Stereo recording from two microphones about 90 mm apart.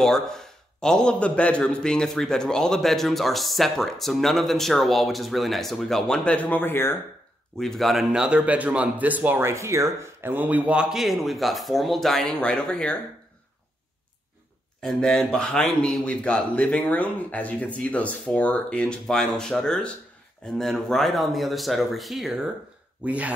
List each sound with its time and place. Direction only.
0.0 s a man's voice: 5° left (ahead or behind); by 7.0 s 25° left (ahead or behind)
7.5 s a man's voice: 5° left (ahead or behind)
8.4 s speech: 15° right (ahead or behind); by 13.0 s 10° left (ahead or behind)
14.8 s a man's voice: 10° left (ahead or behind)
23.0 s speech: 15° right (ahead or behind)